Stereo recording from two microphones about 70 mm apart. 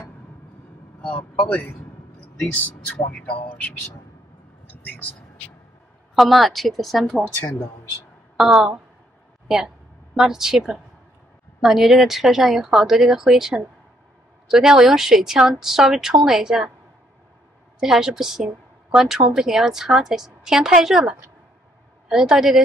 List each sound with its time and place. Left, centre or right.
1.1 s speech: centre
2.5 s speech: left
6.1 s speech: centre
8.4 s speech: centre
10.1 s a woman's voice: centre
17.7 s a woman's voice: centre